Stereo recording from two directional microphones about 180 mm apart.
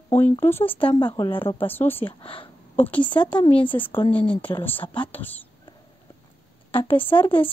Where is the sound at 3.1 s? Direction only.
25° left (ahead or behind).